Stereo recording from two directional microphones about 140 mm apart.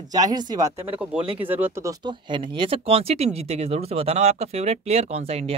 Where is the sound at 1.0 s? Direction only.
10° right (ahead or behind); by 5.5 s 50° right (ahead or behind).